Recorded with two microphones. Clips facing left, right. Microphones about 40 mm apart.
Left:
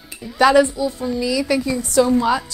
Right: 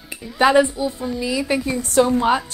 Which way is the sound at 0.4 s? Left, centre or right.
Right.